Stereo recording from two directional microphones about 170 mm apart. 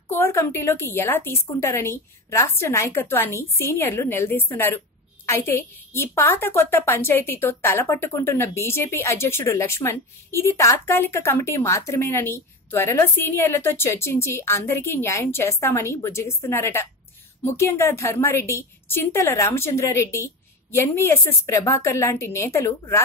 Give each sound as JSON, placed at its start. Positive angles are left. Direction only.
{"t": 0.1, "sound": "a woman's voice", "side_deg": 15}